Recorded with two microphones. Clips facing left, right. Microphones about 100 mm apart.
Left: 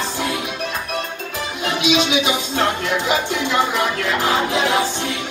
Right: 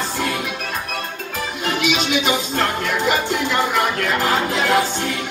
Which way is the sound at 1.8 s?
50° right (ahead or behind).